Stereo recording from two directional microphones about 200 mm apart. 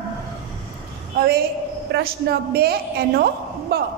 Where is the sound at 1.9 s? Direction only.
50° right (ahead or behind).